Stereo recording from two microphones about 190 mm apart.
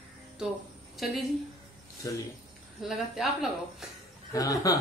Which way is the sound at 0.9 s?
Centre (ahead or behind).